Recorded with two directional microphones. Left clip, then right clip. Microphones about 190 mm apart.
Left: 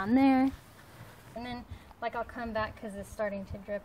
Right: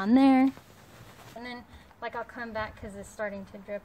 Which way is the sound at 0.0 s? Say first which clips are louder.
Right 4 dB; 50° right (ahead or behind).